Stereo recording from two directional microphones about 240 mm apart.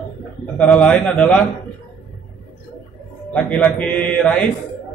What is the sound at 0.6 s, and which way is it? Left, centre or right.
Speech, centre.